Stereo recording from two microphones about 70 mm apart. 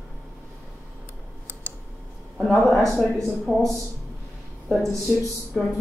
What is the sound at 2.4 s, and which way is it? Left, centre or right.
Speech, centre.